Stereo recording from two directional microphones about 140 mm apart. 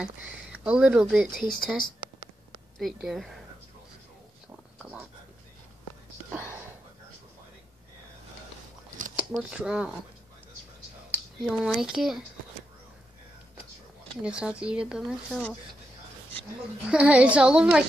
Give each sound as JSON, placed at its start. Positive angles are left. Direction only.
{"t": 0.0, "sound": "speech", "side_deg": -5}
{"t": 6.3, "sound": "whispering", "side_deg": -15}
{"t": 9.3, "sound": "speech", "side_deg": -5}
{"t": 11.3, "sound": "speech", "side_deg": -5}
{"t": 14.2, "sound": "speech", "side_deg": -10}
{"t": 16.8, "sound": "speech", "side_deg": -10}